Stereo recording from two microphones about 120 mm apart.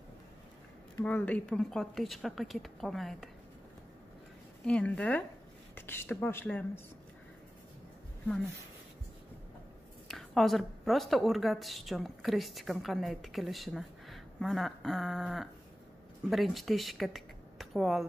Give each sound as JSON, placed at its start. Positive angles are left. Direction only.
{"t": 1.0, "sound": "a woman's voice", "side_deg": 15}
{"t": 4.6, "sound": "speech", "side_deg": 10}
{"t": 10.0, "sound": "a woman's voice", "side_deg": 5}